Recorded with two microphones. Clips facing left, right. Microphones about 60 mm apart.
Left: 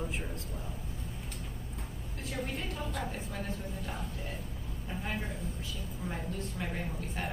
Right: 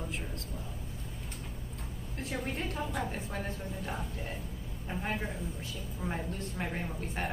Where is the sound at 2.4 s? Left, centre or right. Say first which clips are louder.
Right 2 dB; right.